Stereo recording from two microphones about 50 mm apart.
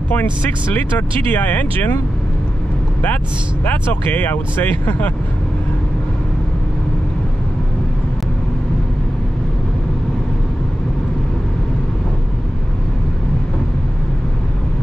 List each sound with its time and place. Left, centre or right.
0.9 s speech: left
3.6 s speech: left